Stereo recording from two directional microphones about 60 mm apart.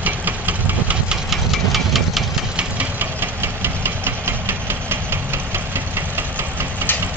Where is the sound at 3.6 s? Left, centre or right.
Right.